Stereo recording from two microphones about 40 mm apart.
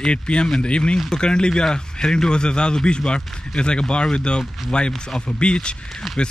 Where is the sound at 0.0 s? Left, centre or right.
Left.